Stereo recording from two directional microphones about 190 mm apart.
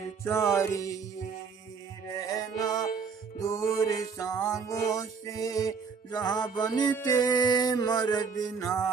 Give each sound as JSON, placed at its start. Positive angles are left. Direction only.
{"t": 0.2, "sound": "music", "side_deg": 15}
{"t": 2.1, "sound": "music", "side_deg": 20}